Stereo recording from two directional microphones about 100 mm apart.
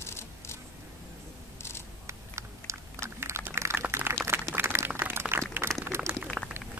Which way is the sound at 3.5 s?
30° right (ahead or behind).